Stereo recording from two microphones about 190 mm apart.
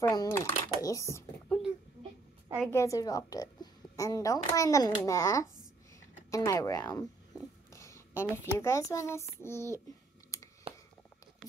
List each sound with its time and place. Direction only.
0.0 s a child's voice: 15° left (ahead or behind)
2.7 s a child's voice: 15° left (ahead or behind)
10.3 s a sound: 15° left (ahead or behind)